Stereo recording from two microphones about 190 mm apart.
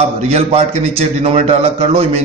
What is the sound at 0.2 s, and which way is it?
A man's voice, 35° right (ahead or behind).